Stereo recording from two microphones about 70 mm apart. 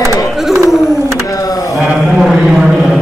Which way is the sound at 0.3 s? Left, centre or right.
Centre.